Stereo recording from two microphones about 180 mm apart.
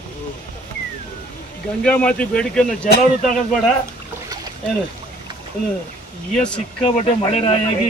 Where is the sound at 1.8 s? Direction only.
5° left (ahead or behind).